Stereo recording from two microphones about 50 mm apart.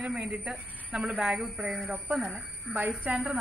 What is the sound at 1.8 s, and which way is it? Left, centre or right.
A woman's voice, right.